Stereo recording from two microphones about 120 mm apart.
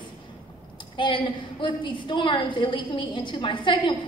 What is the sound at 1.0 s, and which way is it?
A woman's voice, 40° left (ahead or behind).